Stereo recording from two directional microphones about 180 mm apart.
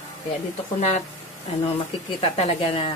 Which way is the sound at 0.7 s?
40° left (ahead or behind).